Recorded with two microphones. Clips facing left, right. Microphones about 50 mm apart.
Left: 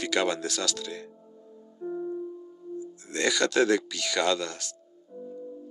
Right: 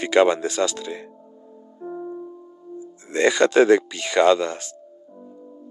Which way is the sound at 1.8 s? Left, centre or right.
Centre.